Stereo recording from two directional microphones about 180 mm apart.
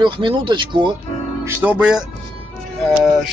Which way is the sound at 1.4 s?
10° right (ahead or behind).